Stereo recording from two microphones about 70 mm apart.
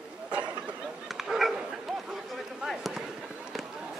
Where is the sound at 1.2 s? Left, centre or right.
Centre.